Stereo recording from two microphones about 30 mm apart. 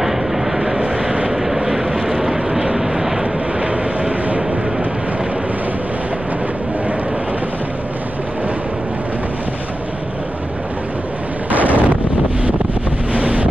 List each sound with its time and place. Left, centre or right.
0.0 s vehicle: centre
4.4 s vehicle: centre
11.5 s wind noise: right
13.1 s wind noise: right